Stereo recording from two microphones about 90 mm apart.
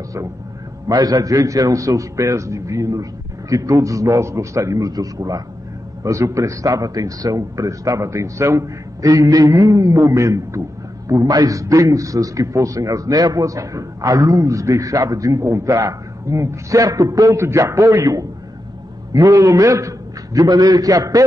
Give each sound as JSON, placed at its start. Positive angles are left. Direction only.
{"t": 0.8, "sound": "a man's voice", "side_deg": -40}
{"t": 11.1, "sound": "a man's voice", "side_deg": -45}